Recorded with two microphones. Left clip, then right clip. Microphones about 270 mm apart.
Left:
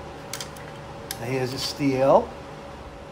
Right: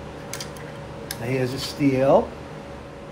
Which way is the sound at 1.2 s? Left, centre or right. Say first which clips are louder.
Right 1 dB; left.